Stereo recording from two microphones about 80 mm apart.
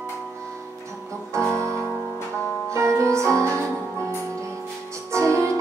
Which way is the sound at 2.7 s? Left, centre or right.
Right.